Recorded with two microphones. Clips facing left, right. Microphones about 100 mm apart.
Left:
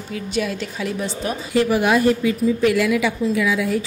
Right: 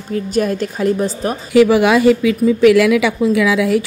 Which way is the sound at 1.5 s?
90° right.